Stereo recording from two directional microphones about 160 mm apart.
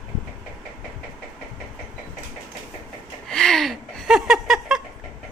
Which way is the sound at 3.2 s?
5° left (ahead or behind).